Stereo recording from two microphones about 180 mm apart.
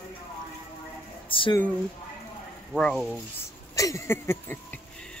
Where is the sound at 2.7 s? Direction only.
Centre (ahead or behind).